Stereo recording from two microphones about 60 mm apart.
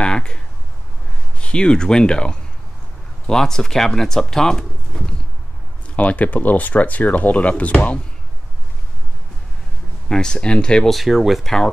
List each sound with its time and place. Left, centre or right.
0.0 s speech: centre
1.4 s speech: centre
5.9 s speech: left
10.0 s speech: centre
10.9 s speech: centre